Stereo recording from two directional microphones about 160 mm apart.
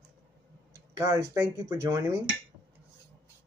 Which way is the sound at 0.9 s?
20° right (ahead or behind).